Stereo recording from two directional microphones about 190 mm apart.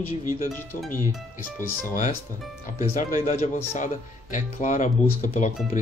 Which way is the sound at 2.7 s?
45° left (ahead or behind).